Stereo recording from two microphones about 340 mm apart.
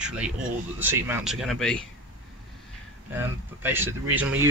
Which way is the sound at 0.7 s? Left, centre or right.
Centre.